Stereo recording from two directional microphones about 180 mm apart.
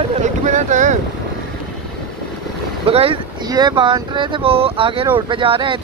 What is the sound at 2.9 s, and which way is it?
Speech, 30° right (ahead or behind).